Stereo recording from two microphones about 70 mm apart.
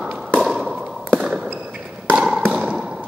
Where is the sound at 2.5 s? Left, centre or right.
Centre.